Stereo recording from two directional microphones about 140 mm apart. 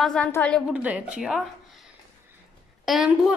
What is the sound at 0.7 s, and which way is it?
Speech, 10° right (ahead or behind).